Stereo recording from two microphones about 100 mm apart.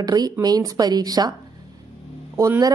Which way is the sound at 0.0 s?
40° right (ahead or behind).